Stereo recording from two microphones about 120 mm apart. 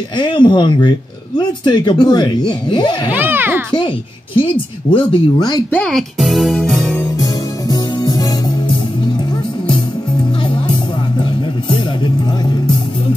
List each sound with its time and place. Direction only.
0.2 s speech: 40° left (ahead or behind)
3.1 s a child's voice: 15° right (ahead or behind)
3.7 s a woman's voice: 45° left (ahead or behind)
5.7 s speech: 5° left (ahead or behind)
7.7 s music: 35° left (ahead or behind)